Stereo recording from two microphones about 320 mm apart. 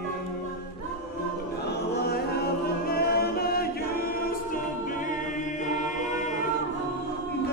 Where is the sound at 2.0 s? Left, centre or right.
Left.